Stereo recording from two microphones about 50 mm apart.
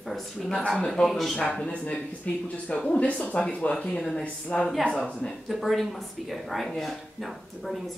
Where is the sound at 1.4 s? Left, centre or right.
Centre.